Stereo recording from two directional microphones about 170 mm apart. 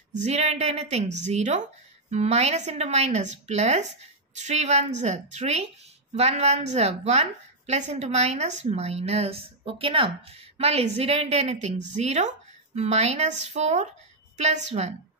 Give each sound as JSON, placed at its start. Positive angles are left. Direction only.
{"t": 0.1, "sound": "a woman's voice", "side_deg": -40}